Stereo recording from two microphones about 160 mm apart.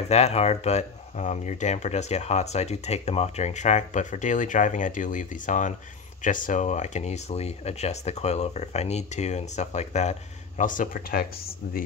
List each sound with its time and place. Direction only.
0.1 s speech: 40° left (ahead or behind)
10.6 s speech: 55° left (ahead or behind)